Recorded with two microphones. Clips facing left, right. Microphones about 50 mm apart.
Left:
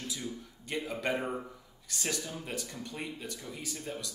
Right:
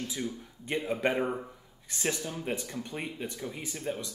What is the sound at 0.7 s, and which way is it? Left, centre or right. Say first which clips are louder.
Speech: right 4 dB; right.